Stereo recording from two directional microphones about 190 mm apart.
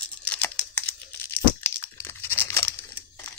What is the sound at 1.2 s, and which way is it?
Crumpling, 10° left (ahead or behind).